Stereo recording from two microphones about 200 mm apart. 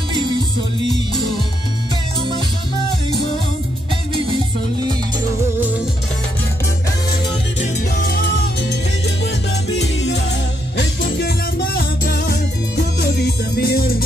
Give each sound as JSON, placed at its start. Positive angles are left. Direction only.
{"t": 7.6, "sound": "music", "side_deg": 50}